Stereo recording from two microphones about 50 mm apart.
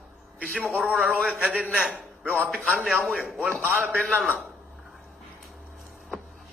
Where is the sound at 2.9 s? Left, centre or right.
Centre.